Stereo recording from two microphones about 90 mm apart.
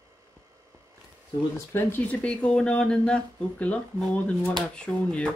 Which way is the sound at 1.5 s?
20° left (ahead or behind).